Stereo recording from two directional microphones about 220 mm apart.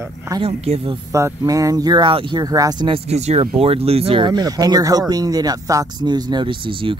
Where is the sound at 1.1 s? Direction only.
15° right (ahead or behind).